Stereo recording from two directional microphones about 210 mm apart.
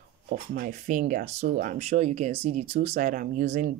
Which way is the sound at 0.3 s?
40° right (ahead or behind).